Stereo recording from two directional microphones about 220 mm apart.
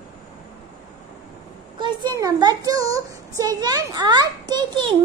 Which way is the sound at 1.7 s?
20° right (ahead or behind).